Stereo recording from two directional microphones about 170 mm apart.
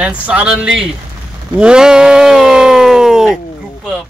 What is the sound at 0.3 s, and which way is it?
Speech, 5° right (ahead or behind).